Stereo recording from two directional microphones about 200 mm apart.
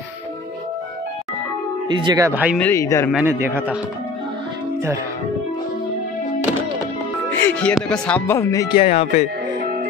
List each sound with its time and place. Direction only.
1.9 s a man's voice: 20° right (ahead or behind)
2.5 s speech: 10° left (ahead or behind)
3.1 s a man's voice: 10° right (ahead or behind)
7.2 s speech: 5° left (ahead or behind); by 9.3 s 35° left (ahead or behind)